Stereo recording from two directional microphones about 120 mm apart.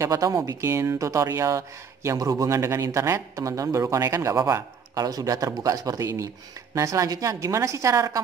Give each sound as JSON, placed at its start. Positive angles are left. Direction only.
{"t": 0.0, "sound": "a man's voice", "side_deg": -30}